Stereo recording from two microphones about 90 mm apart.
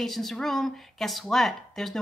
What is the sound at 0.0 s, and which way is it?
Speech, 5° left (ahead or behind).